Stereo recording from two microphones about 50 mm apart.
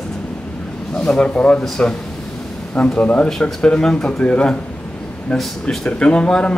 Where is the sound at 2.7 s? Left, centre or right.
Left.